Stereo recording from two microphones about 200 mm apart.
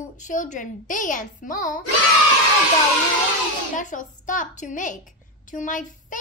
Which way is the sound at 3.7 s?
40° left (ahead or behind).